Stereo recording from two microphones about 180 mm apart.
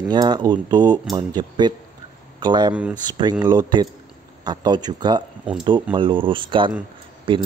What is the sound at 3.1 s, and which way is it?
Speech, 25° right (ahead or behind).